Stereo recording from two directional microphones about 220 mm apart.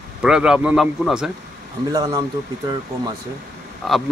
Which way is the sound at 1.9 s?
15° right (ahead or behind).